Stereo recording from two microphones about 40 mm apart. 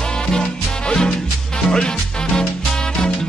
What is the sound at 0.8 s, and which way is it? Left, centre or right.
Music, centre.